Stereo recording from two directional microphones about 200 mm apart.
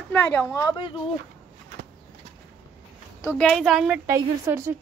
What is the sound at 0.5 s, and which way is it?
Speech, 20° left (ahead or behind).